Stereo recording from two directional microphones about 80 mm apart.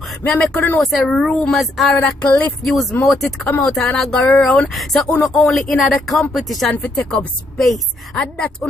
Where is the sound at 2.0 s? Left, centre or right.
Centre.